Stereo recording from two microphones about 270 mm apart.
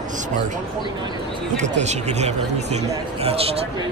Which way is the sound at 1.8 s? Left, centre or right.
Right.